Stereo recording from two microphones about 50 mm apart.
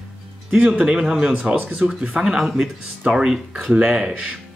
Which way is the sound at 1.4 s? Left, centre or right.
Right.